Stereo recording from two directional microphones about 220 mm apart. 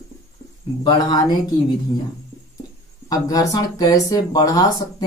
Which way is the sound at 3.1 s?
15° left (ahead or behind).